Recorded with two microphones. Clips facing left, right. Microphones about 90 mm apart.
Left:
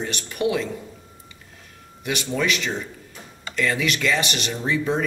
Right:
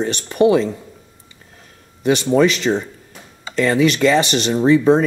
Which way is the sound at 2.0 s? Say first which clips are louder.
Right 11 dB; 35° right (ahead or behind).